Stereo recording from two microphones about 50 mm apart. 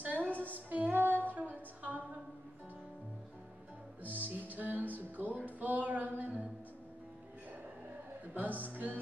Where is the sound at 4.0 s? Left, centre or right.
Right.